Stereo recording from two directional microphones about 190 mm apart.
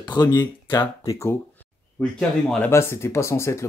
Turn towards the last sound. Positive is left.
turn(degrees=15)  # may be behind; listen again after turning